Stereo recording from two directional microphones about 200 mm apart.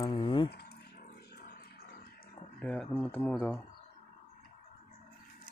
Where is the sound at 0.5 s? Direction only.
55° left (ahead or behind).